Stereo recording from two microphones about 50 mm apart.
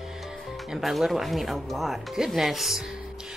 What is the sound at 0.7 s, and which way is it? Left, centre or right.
Speech, centre.